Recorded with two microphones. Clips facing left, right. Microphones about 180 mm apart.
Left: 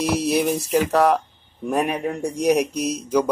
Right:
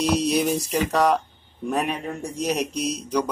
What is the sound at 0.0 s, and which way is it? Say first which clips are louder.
Speech: left 1 dB; 5° left (ahead or behind).